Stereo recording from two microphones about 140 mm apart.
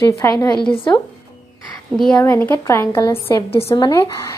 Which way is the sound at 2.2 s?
15° left (ahead or behind).